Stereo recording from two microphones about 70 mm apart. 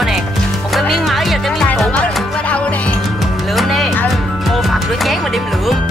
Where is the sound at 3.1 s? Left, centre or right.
Centre.